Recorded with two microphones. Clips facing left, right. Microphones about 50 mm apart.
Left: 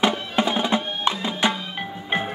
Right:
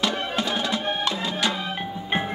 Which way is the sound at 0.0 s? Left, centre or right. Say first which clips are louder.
Left 4 dB; left.